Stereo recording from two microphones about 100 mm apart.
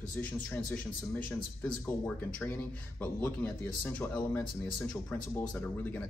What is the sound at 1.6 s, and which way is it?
Speech, 15° left (ahead or behind).